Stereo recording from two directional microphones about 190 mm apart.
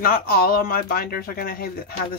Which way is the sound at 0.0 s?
50° left (ahead or behind).